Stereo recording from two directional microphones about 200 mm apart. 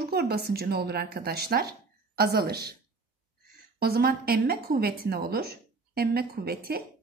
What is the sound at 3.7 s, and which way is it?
Speech, 50° right (ahead or behind).